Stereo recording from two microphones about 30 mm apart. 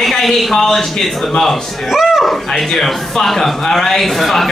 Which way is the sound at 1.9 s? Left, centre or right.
Centre.